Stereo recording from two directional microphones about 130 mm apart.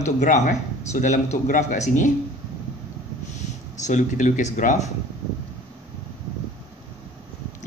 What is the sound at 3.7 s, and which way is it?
Speech, 70° left (ahead or behind).